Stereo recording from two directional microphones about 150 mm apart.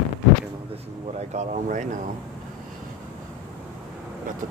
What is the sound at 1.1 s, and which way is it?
Speech, 50° right (ahead or behind).